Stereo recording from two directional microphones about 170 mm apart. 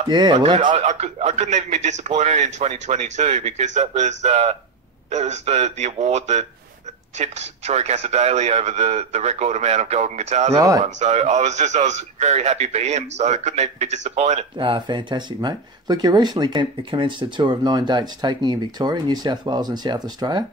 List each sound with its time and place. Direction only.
0.1 s speech: 25° right (ahead or behind)
0.7 s a man's voice: 40° right (ahead or behind)
14.6 s speech: 30° right (ahead or behind)